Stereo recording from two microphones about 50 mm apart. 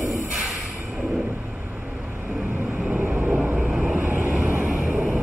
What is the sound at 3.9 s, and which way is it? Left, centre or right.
Vehicle, right.